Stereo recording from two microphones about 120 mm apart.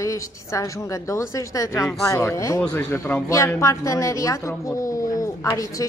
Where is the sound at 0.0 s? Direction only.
25° left (ahead or behind).